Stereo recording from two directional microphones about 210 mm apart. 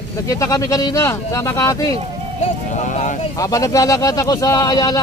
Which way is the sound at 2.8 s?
35° left (ahead or behind).